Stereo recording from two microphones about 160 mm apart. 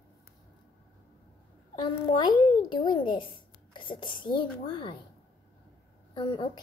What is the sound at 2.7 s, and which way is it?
A child's voice, 30° left (ahead or behind).